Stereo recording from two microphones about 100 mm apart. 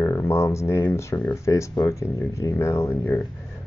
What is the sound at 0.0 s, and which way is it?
Speech, 25° left (ahead or behind).